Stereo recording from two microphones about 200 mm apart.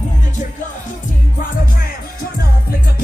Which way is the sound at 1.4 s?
45° left (ahead or behind).